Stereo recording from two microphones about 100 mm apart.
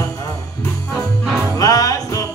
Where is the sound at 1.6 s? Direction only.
35° left (ahead or behind).